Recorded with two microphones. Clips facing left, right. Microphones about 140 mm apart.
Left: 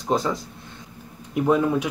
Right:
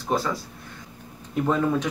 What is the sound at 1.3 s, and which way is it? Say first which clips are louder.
Speech: left 3 dB; 10° left (ahead or behind).